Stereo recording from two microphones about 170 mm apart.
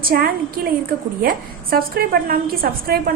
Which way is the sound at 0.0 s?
60° right (ahead or behind).